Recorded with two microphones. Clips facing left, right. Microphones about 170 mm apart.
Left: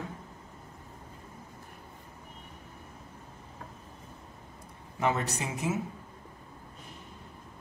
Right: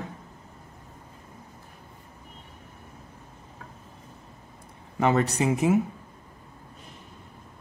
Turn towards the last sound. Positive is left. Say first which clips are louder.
# right 10 dB
turn(degrees=-60)  # may be behind; listen again after turning